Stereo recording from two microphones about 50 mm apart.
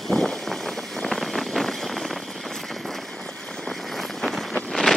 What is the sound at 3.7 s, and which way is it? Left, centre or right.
Vehicle, centre.